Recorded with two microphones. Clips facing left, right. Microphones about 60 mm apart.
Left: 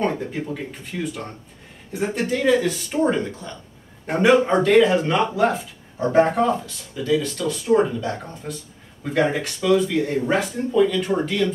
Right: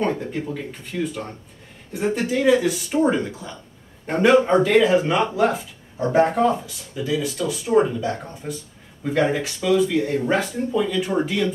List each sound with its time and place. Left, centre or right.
0.0 s a man's voice: centre
6.6 s speech: centre